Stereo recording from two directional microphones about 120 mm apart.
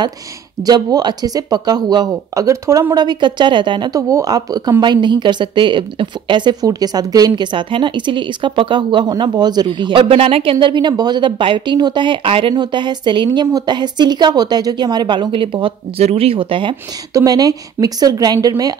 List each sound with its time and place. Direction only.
0.7 s a woman's voice: 35° right (ahead or behind)
3.9 s a woman's voice: 30° right (ahead or behind); by 16.7 s 45° right (ahead or behind)
17.1 s a woman's voice: 30° right (ahead or behind)